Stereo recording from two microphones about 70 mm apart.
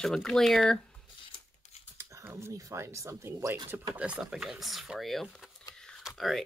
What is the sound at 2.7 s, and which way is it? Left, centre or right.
Speech, right.